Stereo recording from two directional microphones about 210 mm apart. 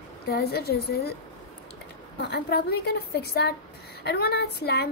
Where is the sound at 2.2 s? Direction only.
50° left (ahead or behind).